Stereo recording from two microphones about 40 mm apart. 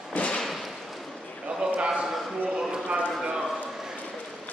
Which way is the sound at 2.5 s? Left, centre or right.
Right.